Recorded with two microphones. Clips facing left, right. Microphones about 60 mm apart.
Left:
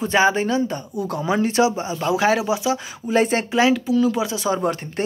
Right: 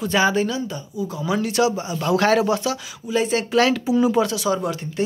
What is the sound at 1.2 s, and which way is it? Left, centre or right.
Speech, left.